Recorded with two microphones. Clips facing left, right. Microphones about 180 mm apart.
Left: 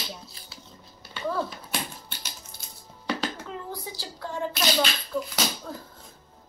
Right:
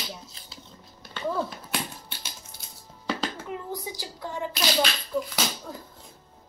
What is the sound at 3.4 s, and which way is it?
Speech, 15° right (ahead or behind).